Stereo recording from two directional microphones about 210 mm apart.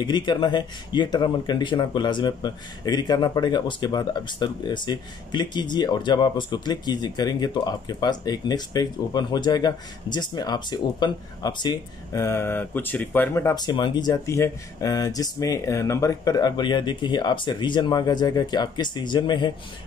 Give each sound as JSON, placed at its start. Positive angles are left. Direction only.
{"t": 0.0, "sound": "speech", "side_deg": 20}